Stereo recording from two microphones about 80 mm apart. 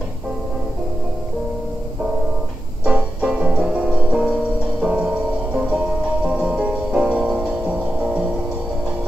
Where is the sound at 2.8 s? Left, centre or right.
Centre.